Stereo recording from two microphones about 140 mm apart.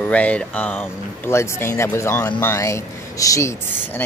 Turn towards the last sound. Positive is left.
turn(degrees=15)  # may be behind; listen again after turning